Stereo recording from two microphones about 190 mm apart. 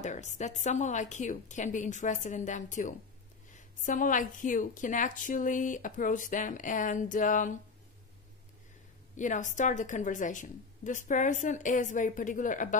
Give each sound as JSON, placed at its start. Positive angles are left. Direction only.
{"t": 0.0, "sound": "a woman's voice", "side_deg": 40}
{"t": 9.1, "sound": "a woman's voice", "side_deg": 40}